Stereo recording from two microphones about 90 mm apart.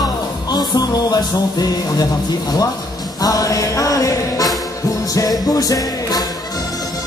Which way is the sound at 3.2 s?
40° left (ahead or behind).